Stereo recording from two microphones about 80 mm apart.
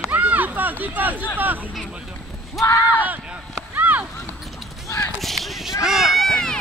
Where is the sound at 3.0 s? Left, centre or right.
Right.